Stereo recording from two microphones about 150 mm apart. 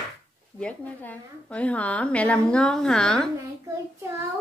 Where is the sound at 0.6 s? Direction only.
10° left (ahead or behind).